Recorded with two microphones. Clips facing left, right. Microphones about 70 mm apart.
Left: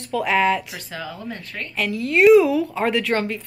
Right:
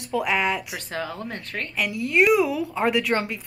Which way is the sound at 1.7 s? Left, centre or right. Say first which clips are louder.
Left 1 dB; centre.